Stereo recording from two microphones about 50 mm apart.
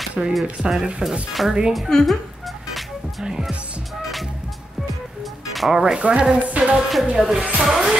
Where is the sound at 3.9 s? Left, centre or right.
Centre.